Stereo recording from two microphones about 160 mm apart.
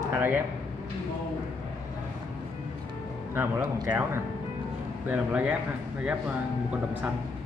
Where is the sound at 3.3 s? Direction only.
20° right (ahead or behind).